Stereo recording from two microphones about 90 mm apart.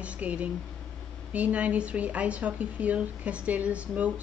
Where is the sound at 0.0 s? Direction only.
15° right (ahead or behind).